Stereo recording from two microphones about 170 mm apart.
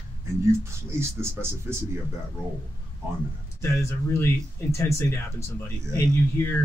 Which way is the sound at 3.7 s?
15° left (ahead or behind).